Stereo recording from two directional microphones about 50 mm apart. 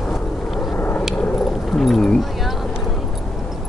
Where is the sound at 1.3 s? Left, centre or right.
Centre.